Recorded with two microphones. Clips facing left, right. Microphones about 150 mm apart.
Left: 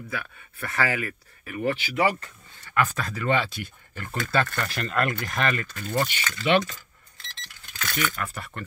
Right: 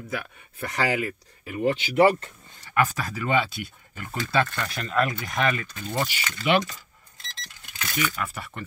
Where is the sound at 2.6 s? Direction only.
15° right (ahead or behind).